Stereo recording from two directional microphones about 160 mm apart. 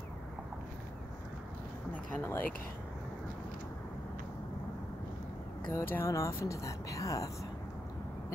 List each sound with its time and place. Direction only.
2.1 s speech: 15° left (ahead or behind)
5.7 s speech: 15° left (ahead or behind)